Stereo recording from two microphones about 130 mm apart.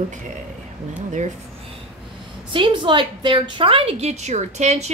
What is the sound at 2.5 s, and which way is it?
A woman's voice, 40° right (ahead or behind).